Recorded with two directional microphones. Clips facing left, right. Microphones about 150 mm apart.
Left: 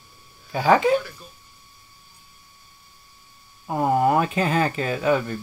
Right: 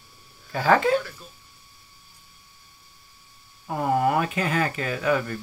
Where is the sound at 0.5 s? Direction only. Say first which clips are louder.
Left 2 dB; 20° left (ahead or behind).